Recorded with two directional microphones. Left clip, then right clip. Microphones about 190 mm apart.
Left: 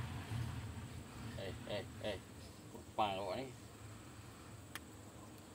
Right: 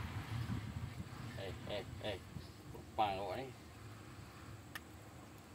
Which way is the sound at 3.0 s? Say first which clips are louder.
Right 1 dB; 5° left (ahead or behind).